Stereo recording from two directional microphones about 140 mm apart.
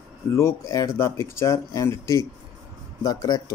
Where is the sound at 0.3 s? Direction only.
20° left (ahead or behind).